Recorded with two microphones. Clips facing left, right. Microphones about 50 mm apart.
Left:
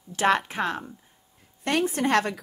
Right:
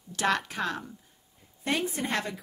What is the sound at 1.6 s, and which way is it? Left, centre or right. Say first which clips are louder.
Speech: left 5 dB; left.